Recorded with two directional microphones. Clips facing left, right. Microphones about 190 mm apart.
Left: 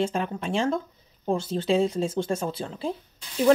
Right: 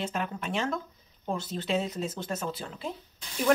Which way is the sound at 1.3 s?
30° left (ahead or behind).